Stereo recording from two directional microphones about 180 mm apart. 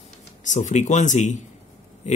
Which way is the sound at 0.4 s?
45° left (ahead or behind).